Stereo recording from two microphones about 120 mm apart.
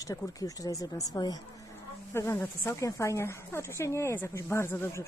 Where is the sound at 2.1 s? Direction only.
20° left (ahead or behind).